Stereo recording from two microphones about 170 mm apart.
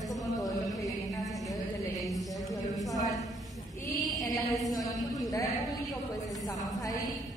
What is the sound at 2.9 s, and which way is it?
Speech, 20° left (ahead or behind).